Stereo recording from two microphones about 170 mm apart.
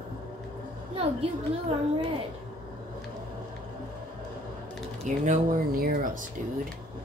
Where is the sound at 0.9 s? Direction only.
35° right (ahead or behind).